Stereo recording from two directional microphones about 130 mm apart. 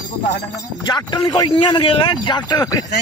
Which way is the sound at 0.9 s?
30° left (ahead or behind).